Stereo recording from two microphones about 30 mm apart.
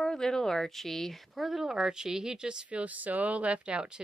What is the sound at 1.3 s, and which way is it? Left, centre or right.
Speech, centre.